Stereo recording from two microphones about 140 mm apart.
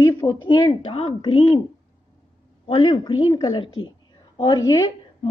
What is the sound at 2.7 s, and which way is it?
A woman's voice, 35° left (ahead or behind).